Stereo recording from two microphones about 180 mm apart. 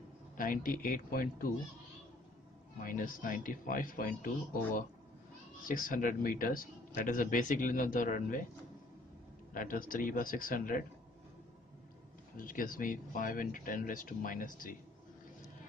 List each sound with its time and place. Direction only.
0.4 s a man's voice: 50° left (ahead or behind)
2.8 s a man's voice: 50° left (ahead or behind)
5.7 s a man's voice: 50° left (ahead or behind)
9.5 s a man's voice: 50° left (ahead or behind)
12.4 s a man's voice: 50° left (ahead or behind)